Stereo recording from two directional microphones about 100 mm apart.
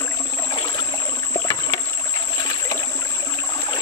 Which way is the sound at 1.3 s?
35° left (ahead or behind).